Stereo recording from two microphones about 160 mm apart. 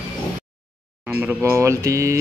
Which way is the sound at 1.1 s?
10° right (ahead or behind).